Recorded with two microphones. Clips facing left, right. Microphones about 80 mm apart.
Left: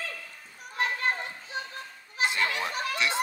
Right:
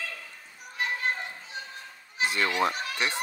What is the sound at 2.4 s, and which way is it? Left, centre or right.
Speech, right.